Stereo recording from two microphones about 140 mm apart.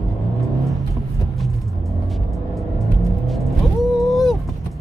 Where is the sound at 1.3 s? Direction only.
Centre (ahead or behind).